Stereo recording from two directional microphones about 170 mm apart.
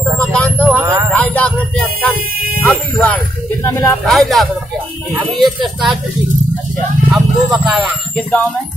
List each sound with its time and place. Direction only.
0.2 s a sound: 5° left (ahead or behind)
0.7 s a sound: 20° right (ahead or behind)
1.1 s music: 10° left (ahead or behind)
2.6 s buzzer: centre (ahead or behind)
3.6 s speech: 15° left (ahead or behind)
4.0 s speech: centre (ahead or behind)
7.1 s speech: centre (ahead or behind)